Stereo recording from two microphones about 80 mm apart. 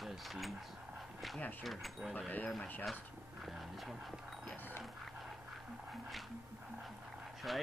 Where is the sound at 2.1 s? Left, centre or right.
Centre.